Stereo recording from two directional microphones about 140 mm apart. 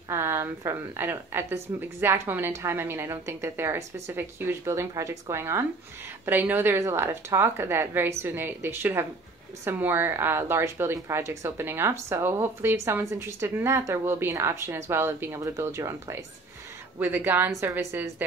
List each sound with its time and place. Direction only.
0.1 s a woman's voice: 15° right (ahead or behind)